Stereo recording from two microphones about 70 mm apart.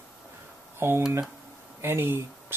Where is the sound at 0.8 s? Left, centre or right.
Right.